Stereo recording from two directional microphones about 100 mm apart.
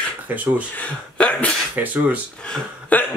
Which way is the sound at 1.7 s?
15° right (ahead or behind).